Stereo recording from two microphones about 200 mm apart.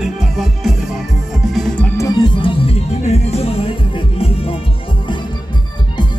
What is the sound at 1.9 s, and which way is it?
Music, 20° left (ahead or behind).